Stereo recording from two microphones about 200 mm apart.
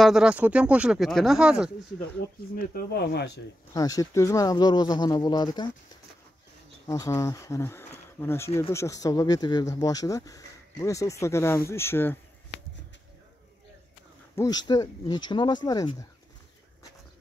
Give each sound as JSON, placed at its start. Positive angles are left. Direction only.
{"t": 0.0, "sound": "speech", "side_deg": -5}
{"t": 2.5, "sound": "speech", "side_deg": 50}
{"t": 3.7, "sound": "speech", "side_deg": 15}
{"t": 6.9, "sound": "speech", "side_deg": 15}
{"t": 14.3, "sound": "speech", "side_deg": 15}